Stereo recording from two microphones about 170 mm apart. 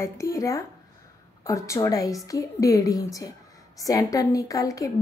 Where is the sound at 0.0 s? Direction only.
20° left (ahead or behind).